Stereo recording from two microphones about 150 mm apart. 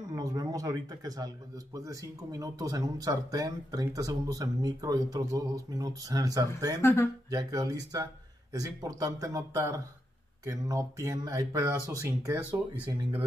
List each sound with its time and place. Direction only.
0.1 s speech: 25° right (ahead or behind)
6.8 s speech: 15° left (ahead or behind)
7.2 s speech: 25° right (ahead or behind)
12.7 s speech: 10° right (ahead or behind)